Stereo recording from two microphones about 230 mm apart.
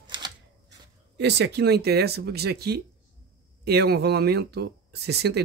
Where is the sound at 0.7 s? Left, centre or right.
Right.